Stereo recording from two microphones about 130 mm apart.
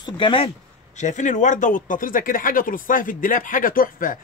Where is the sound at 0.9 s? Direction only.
70° left (ahead or behind).